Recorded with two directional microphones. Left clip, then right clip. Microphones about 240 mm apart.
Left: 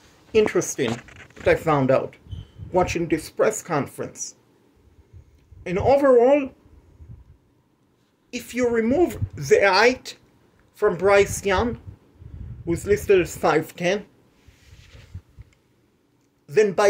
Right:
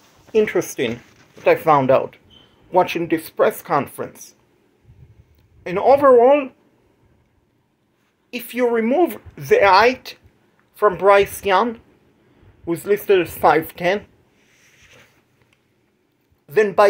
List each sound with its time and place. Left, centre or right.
0.5 s a woman's voice: centre
5.6 s a woman's voice: centre
8.3 s a woman's voice: centre
16.4 s a man's voice: centre